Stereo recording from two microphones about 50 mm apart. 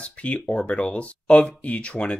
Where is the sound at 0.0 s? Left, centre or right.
Left.